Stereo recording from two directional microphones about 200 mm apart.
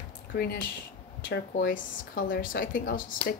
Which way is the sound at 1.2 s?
60° left (ahead or behind).